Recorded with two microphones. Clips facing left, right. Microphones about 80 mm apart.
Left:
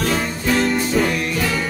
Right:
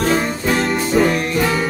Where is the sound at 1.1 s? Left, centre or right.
Right.